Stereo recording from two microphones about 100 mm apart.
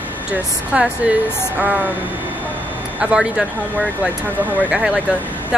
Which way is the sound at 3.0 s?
10° right (ahead or behind).